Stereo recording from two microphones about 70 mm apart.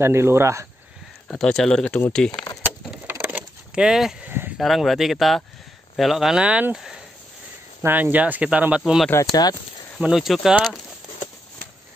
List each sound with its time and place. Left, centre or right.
0.0 s speech: right
1.3 s speech: centre
3.1 s crushing: right
3.8 s speech: centre
4.2 s a sound: right
4.6 s speech: centre
6.4 s speech: centre
7.8 s speech: right
9.2 s speech: left
9.9 s speech: centre